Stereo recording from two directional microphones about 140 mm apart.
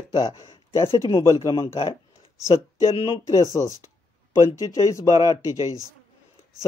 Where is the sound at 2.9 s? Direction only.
40° left (ahead or behind).